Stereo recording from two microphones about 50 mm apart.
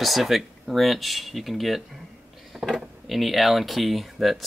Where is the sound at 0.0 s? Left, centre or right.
Centre.